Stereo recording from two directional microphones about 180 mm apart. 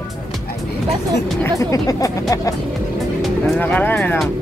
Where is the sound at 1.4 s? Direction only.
20° left (ahead or behind).